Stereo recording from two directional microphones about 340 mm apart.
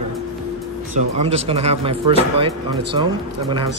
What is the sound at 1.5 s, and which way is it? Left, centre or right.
Speech, centre.